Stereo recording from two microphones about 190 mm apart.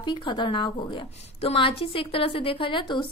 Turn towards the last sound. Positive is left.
turn(degrees=25)  # may be behind; listen again after turning